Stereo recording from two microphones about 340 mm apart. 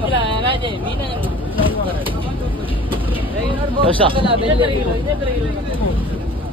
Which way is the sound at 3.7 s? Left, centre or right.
Centre.